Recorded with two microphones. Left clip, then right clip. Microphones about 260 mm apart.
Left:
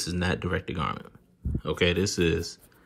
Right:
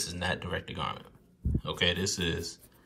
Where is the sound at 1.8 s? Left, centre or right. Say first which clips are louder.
Left 4 dB; centre.